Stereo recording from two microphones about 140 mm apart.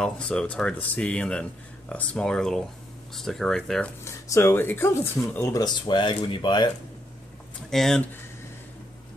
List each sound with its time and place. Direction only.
0.0 s speech: 5° left (ahead or behind)
4.0 s speech: 20° left (ahead or behind)
7.7 s speech: 5° left (ahead or behind)